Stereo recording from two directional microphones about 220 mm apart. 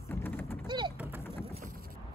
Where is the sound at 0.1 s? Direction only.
10° left (ahead or behind).